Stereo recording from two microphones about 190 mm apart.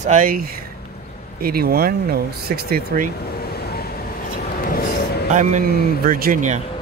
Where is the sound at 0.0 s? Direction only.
45° right (ahead or behind).